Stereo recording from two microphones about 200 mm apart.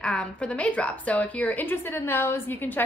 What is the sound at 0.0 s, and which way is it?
A woman's voice, 5° left (ahead or behind).